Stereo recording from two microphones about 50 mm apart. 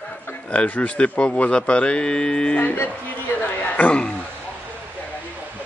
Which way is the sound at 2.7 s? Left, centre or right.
Left.